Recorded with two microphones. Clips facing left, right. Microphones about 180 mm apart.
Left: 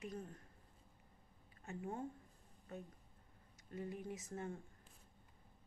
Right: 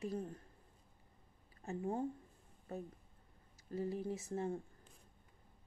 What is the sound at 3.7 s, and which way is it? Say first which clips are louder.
Speech: right 6 dB; 30° right (ahead or behind).